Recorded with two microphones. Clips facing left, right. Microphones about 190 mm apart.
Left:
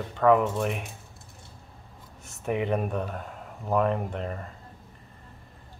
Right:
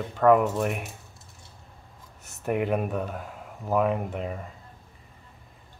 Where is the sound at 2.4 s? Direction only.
5° right (ahead or behind).